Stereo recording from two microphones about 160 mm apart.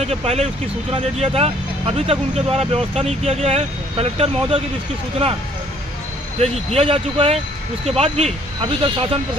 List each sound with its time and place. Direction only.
0.0 s speech: 40° right (ahead or behind)
6.7 s speech: 35° right (ahead or behind)